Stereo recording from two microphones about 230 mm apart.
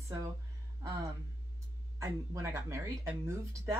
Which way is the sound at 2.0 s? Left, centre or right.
Centre.